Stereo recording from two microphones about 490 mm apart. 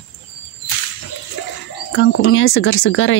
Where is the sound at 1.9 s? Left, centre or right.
Left.